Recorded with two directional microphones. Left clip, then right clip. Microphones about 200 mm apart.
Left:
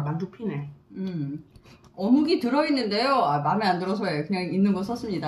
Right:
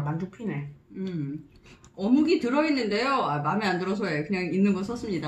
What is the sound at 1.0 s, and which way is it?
Speech, 20° left (ahead or behind).